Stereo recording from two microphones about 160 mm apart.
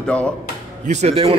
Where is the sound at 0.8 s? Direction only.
45° right (ahead or behind).